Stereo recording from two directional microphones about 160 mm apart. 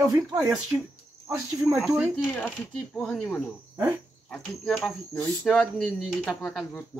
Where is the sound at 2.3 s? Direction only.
10° left (ahead or behind).